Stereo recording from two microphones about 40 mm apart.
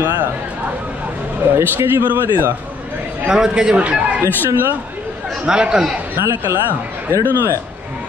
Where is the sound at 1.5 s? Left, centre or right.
Right.